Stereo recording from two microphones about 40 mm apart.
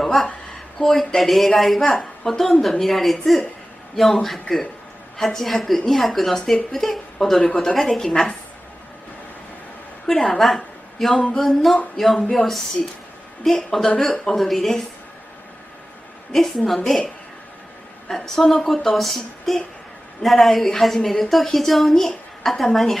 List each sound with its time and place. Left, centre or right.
0.0 s a woman's voice: centre
7.3 s a woman's voice: centre
7.7 s a woman's voice: centre
10.0 s a woman's voice: centre
12.2 s a woman's voice: centre
16.5 s a woman's voice: centre
18.0 s a woman's voice: centre